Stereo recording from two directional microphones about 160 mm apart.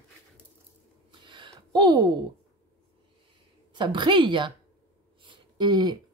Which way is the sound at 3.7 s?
30° right (ahead or behind).